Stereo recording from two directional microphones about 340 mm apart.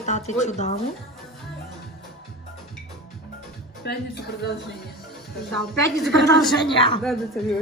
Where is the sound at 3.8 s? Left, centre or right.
Left.